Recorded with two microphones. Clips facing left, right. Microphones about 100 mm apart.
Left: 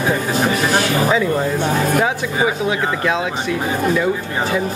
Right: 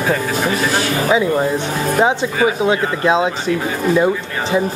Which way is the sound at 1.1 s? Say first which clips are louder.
Right 2 dB; 15° right (ahead or behind).